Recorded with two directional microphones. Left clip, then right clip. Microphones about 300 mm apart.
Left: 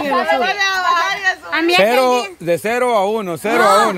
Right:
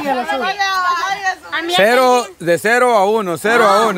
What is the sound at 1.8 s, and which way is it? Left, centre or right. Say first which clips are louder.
Speech: right 2 dB; centre.